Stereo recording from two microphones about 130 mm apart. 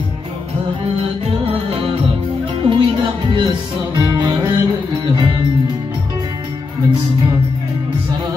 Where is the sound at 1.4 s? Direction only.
50° right (ahead or behind).